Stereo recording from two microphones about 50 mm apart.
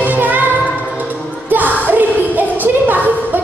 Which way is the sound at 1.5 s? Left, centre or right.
Right.